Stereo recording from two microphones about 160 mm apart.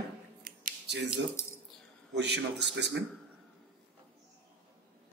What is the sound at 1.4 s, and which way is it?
Speech, 15° left (ahead or behind).